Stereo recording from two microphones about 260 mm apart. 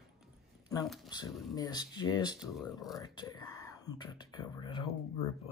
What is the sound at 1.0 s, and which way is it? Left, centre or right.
Speech, centre.